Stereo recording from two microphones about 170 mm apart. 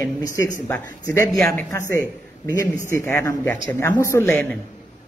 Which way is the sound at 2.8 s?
15° left (ahead or behind).